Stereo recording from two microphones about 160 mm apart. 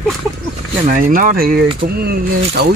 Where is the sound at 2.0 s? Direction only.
80° right.